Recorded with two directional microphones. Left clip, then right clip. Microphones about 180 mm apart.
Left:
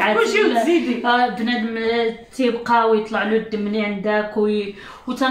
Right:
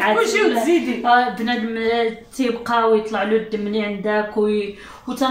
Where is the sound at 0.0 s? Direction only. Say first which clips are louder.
Even; 15° left (ahead or behind).